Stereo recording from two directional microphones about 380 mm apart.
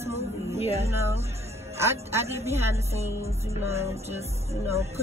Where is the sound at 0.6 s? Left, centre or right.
Centre.